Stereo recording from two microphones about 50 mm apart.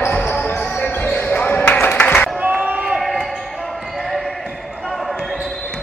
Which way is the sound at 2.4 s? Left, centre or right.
Right.